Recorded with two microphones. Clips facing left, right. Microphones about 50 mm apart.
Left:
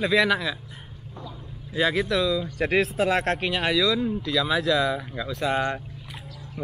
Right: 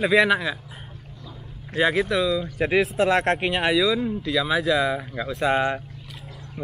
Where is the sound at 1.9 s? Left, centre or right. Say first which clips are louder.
Right 2 dB; centre.